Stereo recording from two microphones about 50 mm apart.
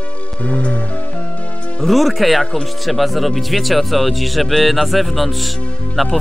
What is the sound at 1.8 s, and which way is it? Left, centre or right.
Speech, centre.